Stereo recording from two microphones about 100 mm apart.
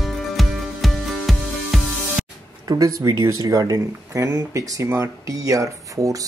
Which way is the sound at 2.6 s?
35° right (ahead or behind).